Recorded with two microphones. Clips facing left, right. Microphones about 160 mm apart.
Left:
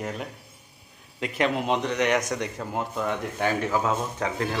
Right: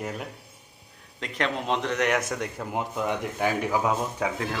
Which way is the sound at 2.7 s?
15° right (ahead or behind).